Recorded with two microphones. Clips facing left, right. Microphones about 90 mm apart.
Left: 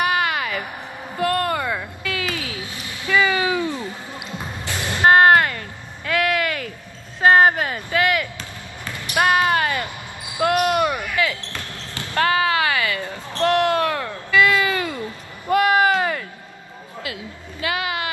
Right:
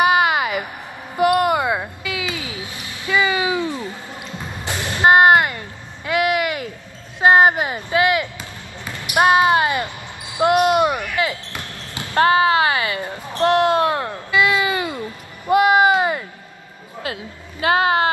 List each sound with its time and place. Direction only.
0.0 s a sound: 20° right (ahead or behind)
8.8 s basketball bounce: 15° right (ahead or behind)
17.0 s speech: 35° right (ahead or behind)